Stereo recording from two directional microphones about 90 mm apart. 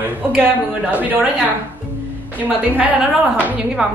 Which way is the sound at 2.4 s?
15° right (ahead or behind).